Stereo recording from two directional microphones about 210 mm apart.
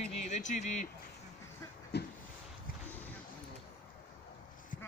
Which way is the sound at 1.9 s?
50° left (ahead or behind).